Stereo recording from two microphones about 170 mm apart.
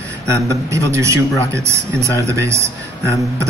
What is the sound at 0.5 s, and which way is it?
Speech, 15° right (ahead or behind).